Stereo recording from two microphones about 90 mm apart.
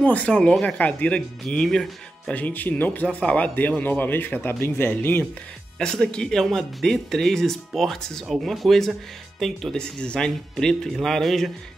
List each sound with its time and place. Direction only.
0.0 s speech: 15° left (ahead or behind)
2.3 s speech: 15° left (ahead or behind)
5.8 s speech: 5° left (ahead or behind)